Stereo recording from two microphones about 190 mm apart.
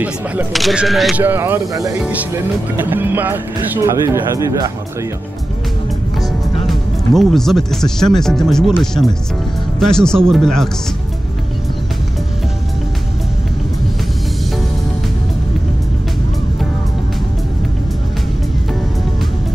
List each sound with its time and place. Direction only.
0.0 s speech: 5° right (ahead or behind)
1.2 s speech: 10° right (ahead or behind)
6.7 s speech: centre (ahead or behind)